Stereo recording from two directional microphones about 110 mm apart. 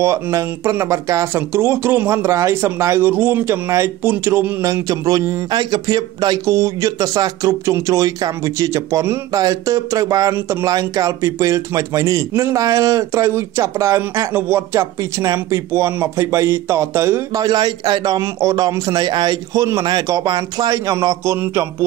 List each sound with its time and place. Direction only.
0.0 s a man's voice: 25° right (ahead or behind)
17.4 s a man's voice: 40° right (ahead or behind)
21.4 s speech: 20° right (ahead or behind)